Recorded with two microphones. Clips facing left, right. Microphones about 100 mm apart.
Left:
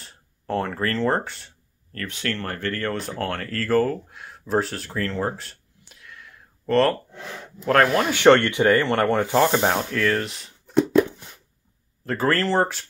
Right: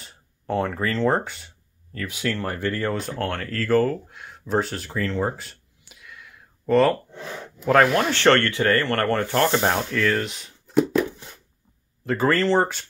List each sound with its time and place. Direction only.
0.0 s speech: centre (ahead or behind)
3.0 s speech: centre (ahead or behind)
8.2 s speech: 15° left (ahead or behind); by 10.9 s centre (ahead or behind)
12.0 s speech: centre (ahead or behind)